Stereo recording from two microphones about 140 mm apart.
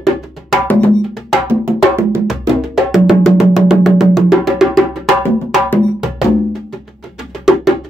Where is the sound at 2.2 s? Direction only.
Centre (ahead or behind).